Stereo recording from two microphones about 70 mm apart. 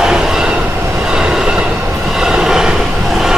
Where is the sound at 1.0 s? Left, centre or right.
Centre.